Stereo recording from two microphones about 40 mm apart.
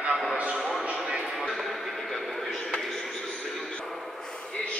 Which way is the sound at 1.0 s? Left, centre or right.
Centre.